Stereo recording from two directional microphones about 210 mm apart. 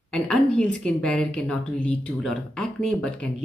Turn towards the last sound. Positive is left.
turn(degrees=5)  # may be behind; listen again after turning